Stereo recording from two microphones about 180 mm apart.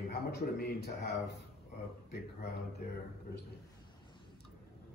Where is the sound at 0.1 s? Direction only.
60° left (ahead or behind).